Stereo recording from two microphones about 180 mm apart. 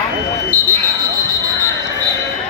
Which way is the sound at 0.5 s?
50° right (ahead or behind).